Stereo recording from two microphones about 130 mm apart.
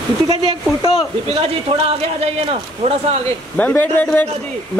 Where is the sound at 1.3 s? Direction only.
50° right (ahead or behind).